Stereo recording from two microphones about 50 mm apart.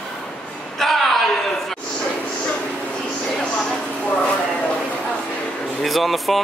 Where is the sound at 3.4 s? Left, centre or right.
Left.